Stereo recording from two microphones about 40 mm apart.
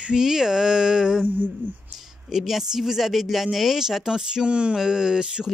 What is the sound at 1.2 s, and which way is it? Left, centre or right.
Speech, right.